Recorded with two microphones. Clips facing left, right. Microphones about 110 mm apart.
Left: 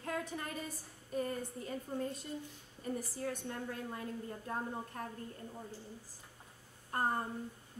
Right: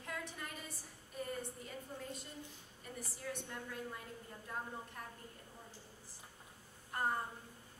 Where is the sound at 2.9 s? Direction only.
40° left (ahead or behind).